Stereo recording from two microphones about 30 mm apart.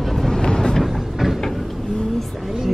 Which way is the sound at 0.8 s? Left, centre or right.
Centre.